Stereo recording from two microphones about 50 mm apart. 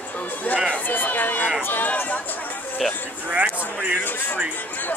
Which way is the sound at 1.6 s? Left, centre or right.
Left.